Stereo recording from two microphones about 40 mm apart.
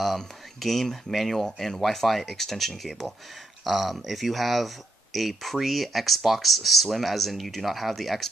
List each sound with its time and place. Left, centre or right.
0.0 s speech: centre